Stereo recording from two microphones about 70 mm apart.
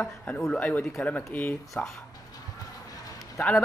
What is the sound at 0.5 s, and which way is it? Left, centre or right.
Speech, left.